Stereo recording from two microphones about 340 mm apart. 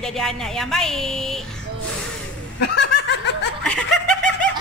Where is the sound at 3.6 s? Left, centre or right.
Centre.